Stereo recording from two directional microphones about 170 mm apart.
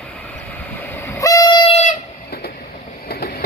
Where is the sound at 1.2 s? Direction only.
20° left (ahead or behind).